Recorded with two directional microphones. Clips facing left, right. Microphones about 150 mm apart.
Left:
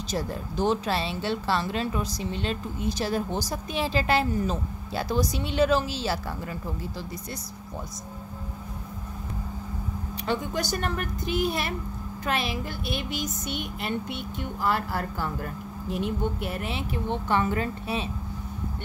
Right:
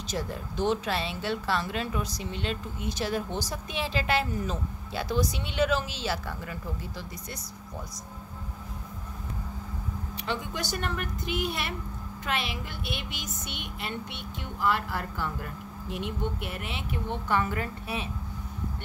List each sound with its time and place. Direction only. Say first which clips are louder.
0.1 s speech: left 3 dB; 35° left (ahead or behind)
10.2 s speech: left 5 dB; 40° left (ahead or behind)